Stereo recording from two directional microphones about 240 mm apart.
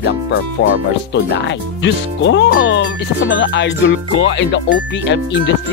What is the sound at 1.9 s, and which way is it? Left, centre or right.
Speech, left.